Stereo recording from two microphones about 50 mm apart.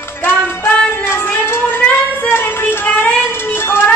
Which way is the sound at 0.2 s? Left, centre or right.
Left.